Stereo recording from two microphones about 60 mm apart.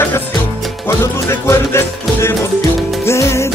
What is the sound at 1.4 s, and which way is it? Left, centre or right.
Music, left.